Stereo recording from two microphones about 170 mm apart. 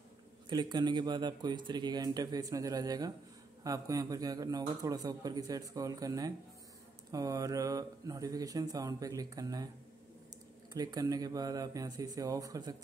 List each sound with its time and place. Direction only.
0.5 s a man's voice: 25° right (ahead or behind)
10.7 s a man's voice: 25° right (ahead or behind)